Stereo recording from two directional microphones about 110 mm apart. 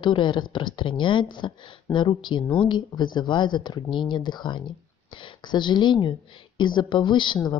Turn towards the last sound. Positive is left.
turn(degrees=45)  # may be behind; listen again after turning